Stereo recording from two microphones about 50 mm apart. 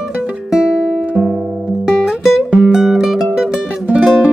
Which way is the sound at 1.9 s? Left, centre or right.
Centre.